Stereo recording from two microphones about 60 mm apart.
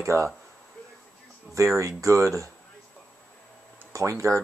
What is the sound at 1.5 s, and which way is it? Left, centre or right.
Speech, right.